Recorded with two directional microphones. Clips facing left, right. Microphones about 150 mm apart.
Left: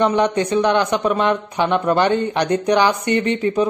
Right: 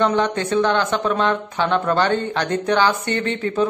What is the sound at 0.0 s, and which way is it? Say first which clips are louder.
A woman's voice: left 2 dB; 15° left (ahead or behind).